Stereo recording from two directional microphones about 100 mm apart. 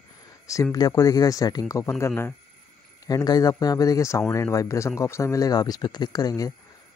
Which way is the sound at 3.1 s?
40° left (ahead or behind).